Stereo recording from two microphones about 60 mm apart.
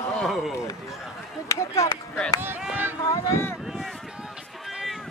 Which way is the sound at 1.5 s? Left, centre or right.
Left.